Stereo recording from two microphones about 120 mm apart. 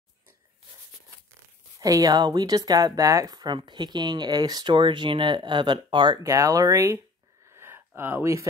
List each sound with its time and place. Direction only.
1.8 s speech: 30° right (ahead or behind)
6.2 s speech: 25° right (ahead or behind)
7.5 s a sound: 20° right (ahead or behind)